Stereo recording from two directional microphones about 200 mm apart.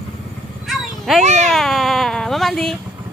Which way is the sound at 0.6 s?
Centre (ahead or behind).